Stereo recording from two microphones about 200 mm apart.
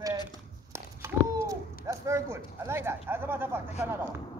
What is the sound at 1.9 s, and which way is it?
Speech, 15° right (ahead or behind).